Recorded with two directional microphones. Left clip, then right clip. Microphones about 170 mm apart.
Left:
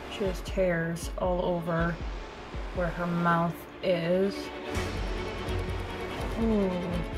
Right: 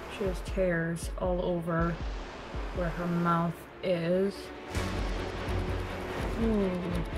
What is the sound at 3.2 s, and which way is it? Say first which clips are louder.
Speech: left 3 dB; centre (ahead or behind).